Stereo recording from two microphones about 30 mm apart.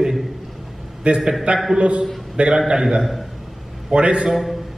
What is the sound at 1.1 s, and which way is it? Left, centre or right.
Speech, right.